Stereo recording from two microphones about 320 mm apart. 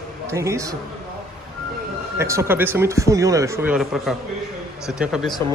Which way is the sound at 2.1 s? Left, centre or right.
Centre.